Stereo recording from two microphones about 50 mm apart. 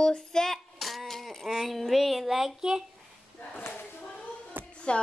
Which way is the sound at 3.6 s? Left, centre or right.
Left.